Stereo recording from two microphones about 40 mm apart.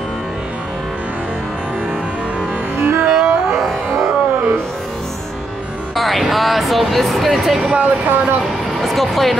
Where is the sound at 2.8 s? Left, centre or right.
Right.